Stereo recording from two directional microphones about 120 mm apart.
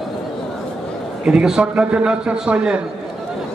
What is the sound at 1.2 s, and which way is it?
A man's voice, 5° right (ahead or behind).